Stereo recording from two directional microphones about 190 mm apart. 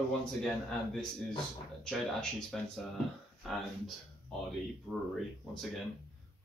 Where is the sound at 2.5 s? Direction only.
Centre (ahead or behind).